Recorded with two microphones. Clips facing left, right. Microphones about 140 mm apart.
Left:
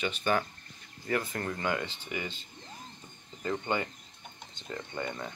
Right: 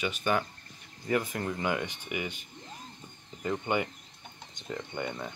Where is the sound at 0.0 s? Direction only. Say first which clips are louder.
Even; 10° right (ahead or behind).